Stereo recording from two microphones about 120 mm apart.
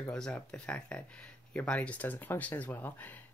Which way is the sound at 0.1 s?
5° left (ahead or behind).